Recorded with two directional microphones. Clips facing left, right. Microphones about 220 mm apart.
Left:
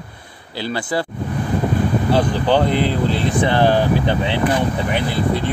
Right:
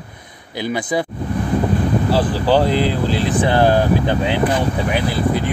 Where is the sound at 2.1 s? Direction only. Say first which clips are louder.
Even; 5° right (ahead or behind).